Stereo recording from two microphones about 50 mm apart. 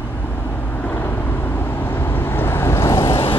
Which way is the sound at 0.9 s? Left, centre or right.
Left.